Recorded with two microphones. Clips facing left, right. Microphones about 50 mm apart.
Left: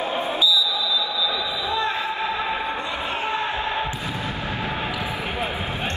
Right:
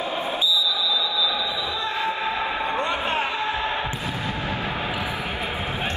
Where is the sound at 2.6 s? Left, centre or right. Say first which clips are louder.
Right 3 dB; right.